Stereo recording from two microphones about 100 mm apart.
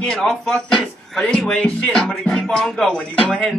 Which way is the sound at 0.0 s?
5° left (ahead or behind).